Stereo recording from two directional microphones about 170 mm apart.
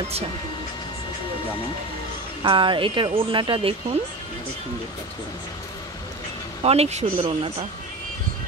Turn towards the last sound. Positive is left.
turn(degrees=-35)  # may be behind; listen again after turning